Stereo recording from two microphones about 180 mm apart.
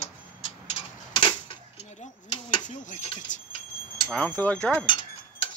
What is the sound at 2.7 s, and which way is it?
Tick-tock, 45° left (ahead or behind).